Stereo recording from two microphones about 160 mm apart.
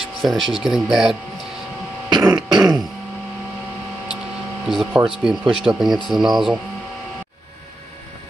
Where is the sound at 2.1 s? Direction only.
25° right (ahead or behind).